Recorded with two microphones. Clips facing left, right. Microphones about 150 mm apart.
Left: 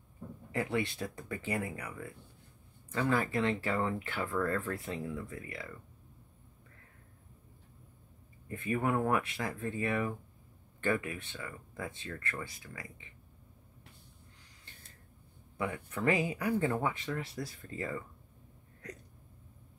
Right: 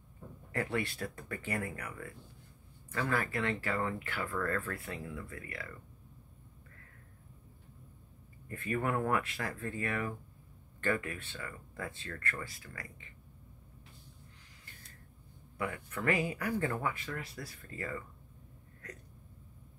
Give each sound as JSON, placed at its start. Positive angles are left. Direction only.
{"t": 0.5, "sound": "speech", "side_deg": 15}
{"t": 8.5, "sound": "speech", "side_deg": 20}
{"t": 15.5, "sound": "speech", "side_deg": 20}